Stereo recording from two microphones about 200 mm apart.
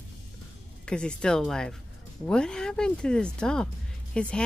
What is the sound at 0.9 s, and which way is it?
Speech, 5° left (ahead or behind).